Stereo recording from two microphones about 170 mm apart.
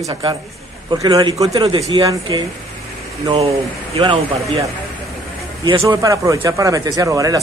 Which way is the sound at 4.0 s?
30° right (ahead or behind).